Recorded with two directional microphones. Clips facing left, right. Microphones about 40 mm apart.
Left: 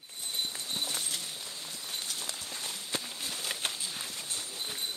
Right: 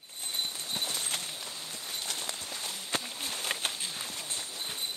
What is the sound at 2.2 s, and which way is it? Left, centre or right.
Walk, right.